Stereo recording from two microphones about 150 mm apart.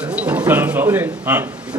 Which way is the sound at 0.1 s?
10° right (ahead or behind).